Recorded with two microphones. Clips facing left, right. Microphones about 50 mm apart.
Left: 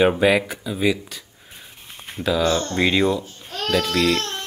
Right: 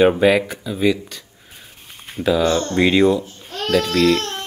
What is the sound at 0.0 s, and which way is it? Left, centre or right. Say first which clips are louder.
Speech: right 3 dB; centre.